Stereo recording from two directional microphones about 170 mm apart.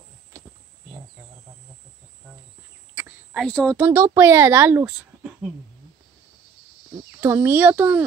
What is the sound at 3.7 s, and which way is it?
Speech, 15° right (ahead or behind).